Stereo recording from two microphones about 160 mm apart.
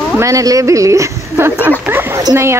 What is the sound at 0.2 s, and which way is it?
Speech, 20° right (ahead or behind).